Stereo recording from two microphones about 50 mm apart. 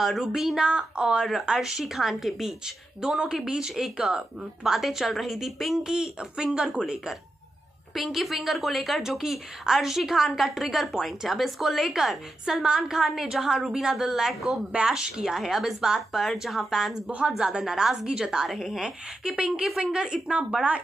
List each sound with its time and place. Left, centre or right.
0.0 s a woman's voice: centre
0.7 s a woman's voice: centre
4.7 s a woman's voice: centre
5.9 s a woman's voice: centre
18.5 s a woman's voice: centre